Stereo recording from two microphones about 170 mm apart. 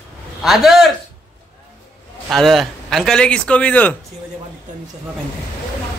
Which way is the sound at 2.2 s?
Centre (ahead or behind).